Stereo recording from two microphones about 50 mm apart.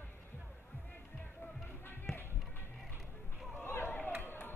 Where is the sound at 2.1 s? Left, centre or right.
Centre.